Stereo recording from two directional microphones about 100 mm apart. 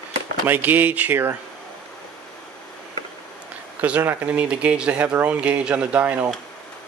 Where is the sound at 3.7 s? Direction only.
15° right (ahead or behind).